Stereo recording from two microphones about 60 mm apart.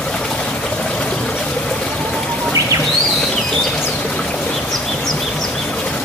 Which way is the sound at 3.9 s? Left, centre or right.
Centre.